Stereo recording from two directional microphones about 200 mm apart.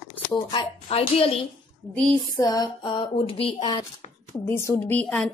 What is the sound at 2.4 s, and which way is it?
A woman's voice, 20° left (ahead or behind).